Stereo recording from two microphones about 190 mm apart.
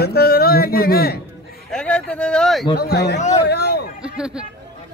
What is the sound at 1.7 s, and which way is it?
Speech, 5° left (ahead or behind).